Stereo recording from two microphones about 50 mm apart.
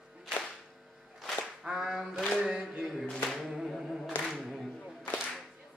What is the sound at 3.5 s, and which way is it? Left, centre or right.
Music, centre.